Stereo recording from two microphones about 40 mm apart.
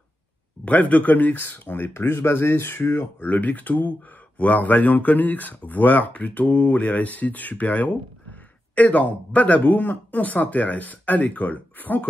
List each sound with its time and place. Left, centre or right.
0.7 s speech: left
2.0 s speech: left
3.2 s speech: left